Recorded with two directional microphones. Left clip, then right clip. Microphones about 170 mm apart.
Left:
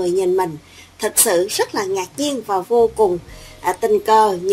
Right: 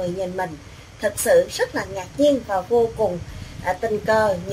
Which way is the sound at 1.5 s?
45° left (ahead or behind).